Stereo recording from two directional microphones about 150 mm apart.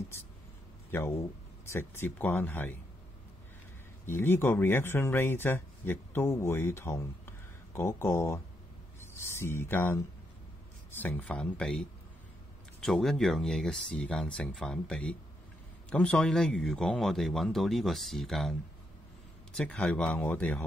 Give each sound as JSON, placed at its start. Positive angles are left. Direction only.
{"t": 0.9, "sound": "speech", "side_deg": 15}
{"t": 4.0, "sound": "speech", "side_deg": 15}
{"t": 12.8, "sound": "speech", "side_deg": 5}
{"t": 19.5, "sound": "speech", "side_deg": 5}